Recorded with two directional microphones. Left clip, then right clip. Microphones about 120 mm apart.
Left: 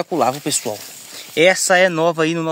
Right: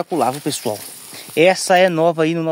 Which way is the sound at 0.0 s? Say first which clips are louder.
Left 1 dB; 15° right (ahead or behind).